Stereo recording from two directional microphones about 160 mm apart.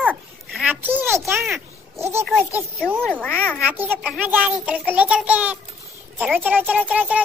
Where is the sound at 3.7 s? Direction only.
10° right (ahead or behind).